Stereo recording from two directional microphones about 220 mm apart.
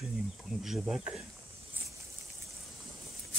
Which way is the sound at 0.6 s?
Centre (ahead or behind).